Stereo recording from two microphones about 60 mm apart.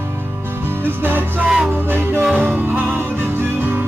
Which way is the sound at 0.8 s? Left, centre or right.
Right.